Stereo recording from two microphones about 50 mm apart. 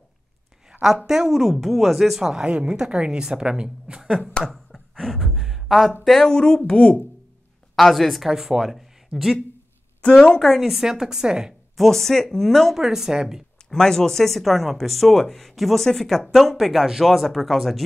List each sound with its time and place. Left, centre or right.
0.8 s a woman's voice: centre
2.4 s a woman's voice: centre
4.5 s a sound: centre
6.0 s speech: centre
7.7 s speech: centre
10.1 s speech: centre
10.4 s a woman's voice: centre
11.7 s speech: centre
12.7 s a woman's voice: centre
13.7 s speech: centre